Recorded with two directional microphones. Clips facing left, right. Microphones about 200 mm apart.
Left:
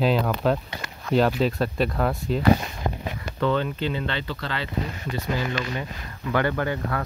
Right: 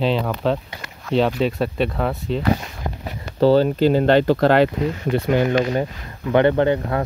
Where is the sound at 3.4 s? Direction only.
35° right (ahead or behind); by 5.6 s 60° right (ahead or behind).